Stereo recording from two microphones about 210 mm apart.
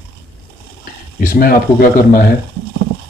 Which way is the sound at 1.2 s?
45° left (ahead or behind).